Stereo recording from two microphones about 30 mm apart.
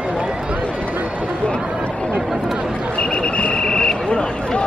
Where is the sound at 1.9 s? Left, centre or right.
Left.